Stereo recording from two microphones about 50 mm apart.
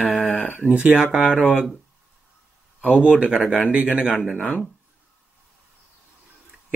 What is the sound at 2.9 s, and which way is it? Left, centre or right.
Speech, centre.